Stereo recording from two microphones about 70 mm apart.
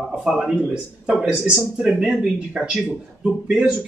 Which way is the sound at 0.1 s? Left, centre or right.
Centre.